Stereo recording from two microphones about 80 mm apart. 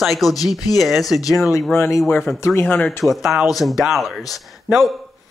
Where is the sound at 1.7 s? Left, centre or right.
Left.